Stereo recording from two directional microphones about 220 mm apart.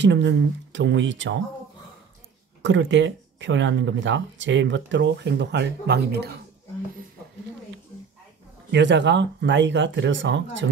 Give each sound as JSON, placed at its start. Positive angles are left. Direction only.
{"t": 0.0, "sound": "speech", "side_deg": -55}
{"t": 2.6, "sound": "speech", "side_deg": -60}
{"t": 8.7, "sound": "speech", "side_deg": -55}